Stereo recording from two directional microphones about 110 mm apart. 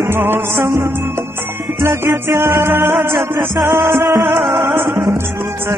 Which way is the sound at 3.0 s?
35° right (ahead or behind).